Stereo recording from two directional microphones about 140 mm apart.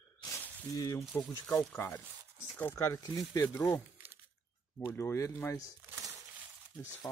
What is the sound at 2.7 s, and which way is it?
Speech, 25° left (ahead or behind).